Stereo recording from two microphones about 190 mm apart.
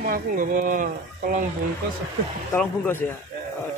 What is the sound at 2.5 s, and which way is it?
Speech, 10° left (ahead or behind).